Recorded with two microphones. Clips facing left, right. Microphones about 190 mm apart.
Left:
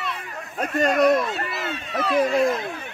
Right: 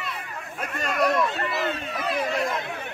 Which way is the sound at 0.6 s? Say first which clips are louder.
Left 8 dB; 40° left (ahead or behind).